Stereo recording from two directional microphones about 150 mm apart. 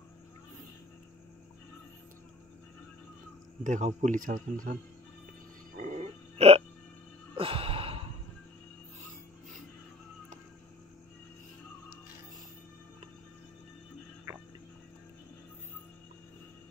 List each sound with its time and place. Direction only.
3.6 s speech: 55° right (ahead or behind)
5.8 s burping: 50° right (ahead or behind)
7.3 s sigh: 40° right (ahead or behind)